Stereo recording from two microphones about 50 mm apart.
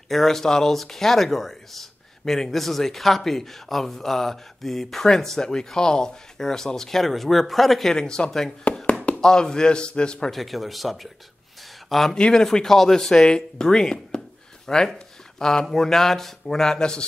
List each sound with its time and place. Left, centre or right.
0.1 s speech: centre
7.9 s speech: centre
10.3 s speech: centre